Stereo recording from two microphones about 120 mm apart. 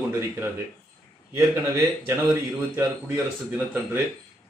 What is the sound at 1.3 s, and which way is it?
Speech, 25° right (ahead or behind).